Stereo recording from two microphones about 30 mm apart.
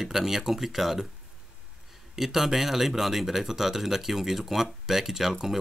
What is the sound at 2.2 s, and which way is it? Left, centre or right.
Speech, centre.